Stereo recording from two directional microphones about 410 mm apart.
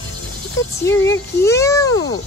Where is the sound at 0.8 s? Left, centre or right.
Centre.